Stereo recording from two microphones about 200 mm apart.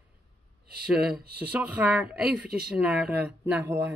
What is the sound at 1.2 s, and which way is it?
Speech, 50° right (ahead or behind).